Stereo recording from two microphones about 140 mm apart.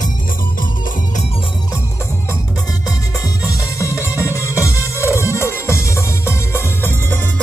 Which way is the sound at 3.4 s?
20° left (ahead or behind).